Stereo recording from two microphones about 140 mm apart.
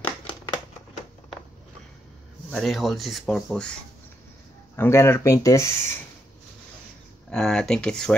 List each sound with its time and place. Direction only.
2.5 s speech: centre (ahead or behind)
4.7 s speech: 15° left (ahead or behind)
7.2 s speech: 5° left (ahead or behind)